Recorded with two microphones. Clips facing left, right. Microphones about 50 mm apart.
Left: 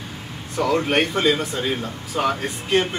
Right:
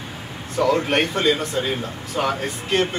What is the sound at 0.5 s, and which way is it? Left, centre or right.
Speech, centre.